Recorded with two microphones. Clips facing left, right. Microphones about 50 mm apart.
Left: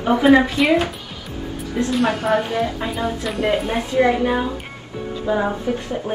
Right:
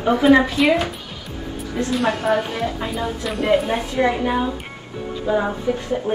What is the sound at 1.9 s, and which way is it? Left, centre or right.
A woman's voice, centre.